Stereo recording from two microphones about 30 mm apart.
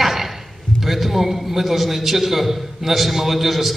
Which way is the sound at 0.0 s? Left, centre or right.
Centre.